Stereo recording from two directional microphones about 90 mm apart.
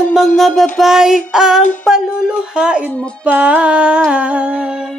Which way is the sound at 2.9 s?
15° left (ahead or behind).